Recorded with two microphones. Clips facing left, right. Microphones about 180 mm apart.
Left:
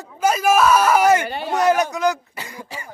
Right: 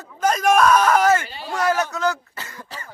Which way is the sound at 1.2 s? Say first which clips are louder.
Left 8 dB; 60° left (ahead or behind).